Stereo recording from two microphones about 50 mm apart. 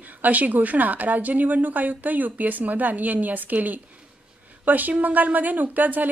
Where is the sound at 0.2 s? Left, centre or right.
Right.